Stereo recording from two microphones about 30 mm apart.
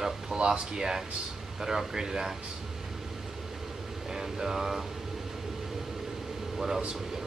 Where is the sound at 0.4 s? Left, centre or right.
Right.